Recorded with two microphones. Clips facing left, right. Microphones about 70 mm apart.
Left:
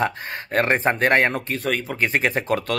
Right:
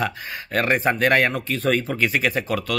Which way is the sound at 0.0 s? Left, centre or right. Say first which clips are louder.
Left 2 dB; left.